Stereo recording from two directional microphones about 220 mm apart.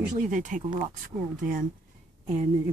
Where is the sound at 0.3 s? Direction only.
35° right (ahead or behind).